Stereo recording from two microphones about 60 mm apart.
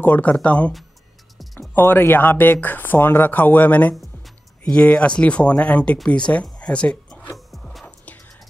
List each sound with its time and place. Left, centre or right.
0.0 s speech: left
1.4 s music: centre
1.7 s speech: left
4.6 s speech: centre
7.3 s a sound: centre